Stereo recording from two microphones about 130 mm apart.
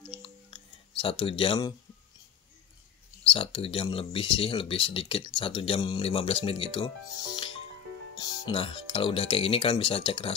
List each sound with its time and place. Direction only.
0.0 s a sound: 40° left (ahead or behind)
3.3 s speech: 45° left (ahead or behind)
8.2 s music: 30° left (ahead or behind)
8.5 s speech: 45° left (ahead or behind)